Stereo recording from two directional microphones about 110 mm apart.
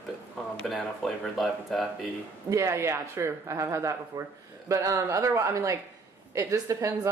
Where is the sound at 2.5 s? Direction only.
25° right (ahead or behind).